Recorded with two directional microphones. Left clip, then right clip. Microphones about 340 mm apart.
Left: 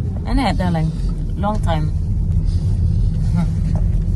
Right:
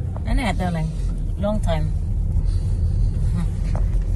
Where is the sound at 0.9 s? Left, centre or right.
Centre.